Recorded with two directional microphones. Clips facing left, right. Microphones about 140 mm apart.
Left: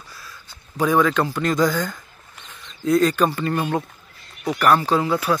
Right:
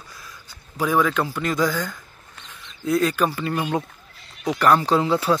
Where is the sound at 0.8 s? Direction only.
5° right (ahead or behind).